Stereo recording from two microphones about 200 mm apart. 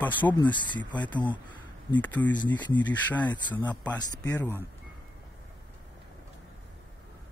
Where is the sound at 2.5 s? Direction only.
20° left (ahead or behind).